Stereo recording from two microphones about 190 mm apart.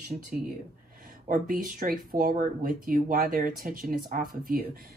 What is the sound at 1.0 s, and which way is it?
Speech, 45° right (ahead or behind).